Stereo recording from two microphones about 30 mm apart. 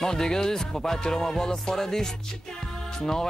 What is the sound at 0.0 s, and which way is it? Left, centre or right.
Music, centre.